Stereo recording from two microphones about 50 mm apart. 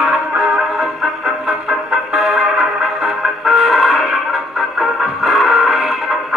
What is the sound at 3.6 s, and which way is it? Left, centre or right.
Music, centre.